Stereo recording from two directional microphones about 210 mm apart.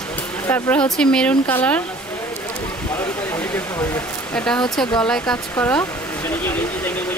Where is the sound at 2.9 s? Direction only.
10° left (ahead or behind).